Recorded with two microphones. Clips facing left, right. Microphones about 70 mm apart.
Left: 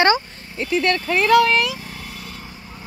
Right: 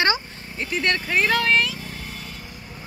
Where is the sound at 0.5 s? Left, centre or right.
Centre.